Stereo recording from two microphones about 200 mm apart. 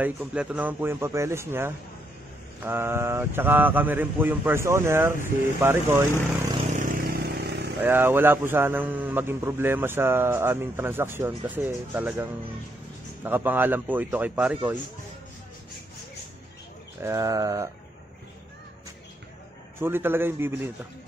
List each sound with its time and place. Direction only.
0.0 s a man's voice: 5° right (ahead or behind)
6.7 s vehicle: 40° right (ahead or behind)
7.8 s a man's voice: 10° right (ahead or behind)
17.0 s a man's voice: 15° right (ahead or behind)
19.8 s a man's voice: 10° right (ahead or behind)